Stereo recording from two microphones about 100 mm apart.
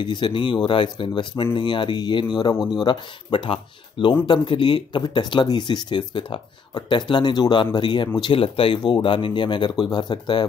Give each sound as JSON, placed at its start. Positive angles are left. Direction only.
{"t": 0.0, "sound": "speech", "side_deg": 50}